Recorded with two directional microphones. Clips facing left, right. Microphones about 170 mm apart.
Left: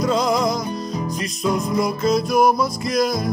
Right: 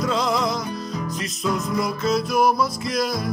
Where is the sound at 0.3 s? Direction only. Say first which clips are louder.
Left 3 dB; 45° left (ahead or behind).